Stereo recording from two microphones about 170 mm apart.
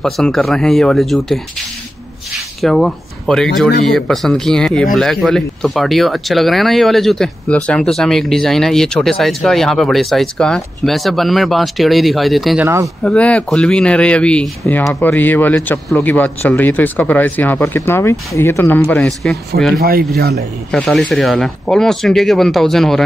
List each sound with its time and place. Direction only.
0.0 s speech: centre (ahead or behind)
2.6 s speech: centre (ahead or behind)
19.8 s speech: 60° right (ahead or behind)
20.7 s speech: centre (ahead or behind)